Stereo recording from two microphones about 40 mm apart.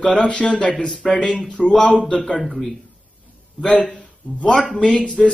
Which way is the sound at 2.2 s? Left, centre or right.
Centre.